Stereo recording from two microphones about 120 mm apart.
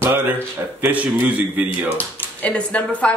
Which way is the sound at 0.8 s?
15° right (ahead or behind).